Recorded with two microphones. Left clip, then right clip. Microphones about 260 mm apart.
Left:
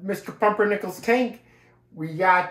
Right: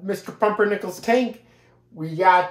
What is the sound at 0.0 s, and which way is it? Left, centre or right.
Speech, centre.